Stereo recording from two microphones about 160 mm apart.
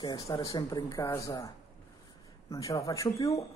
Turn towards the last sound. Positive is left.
turn(degrees=20)  # may be behind; listen again after turning